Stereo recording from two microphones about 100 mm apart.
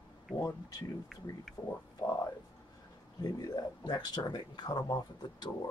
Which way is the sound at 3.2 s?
40° left (ahead or behind).